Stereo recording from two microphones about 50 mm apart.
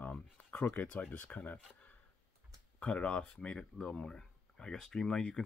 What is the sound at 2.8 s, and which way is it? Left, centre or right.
Speech, left.